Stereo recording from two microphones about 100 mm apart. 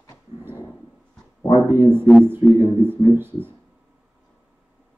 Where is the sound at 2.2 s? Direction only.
20° right (ahead or behind).